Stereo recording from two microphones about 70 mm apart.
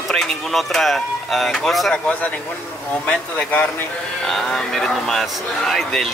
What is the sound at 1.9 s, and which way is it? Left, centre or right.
A man's voice, centre.